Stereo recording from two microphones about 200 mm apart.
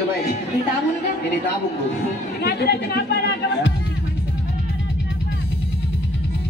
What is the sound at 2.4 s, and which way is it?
Speech, 55° left (ahead or behind).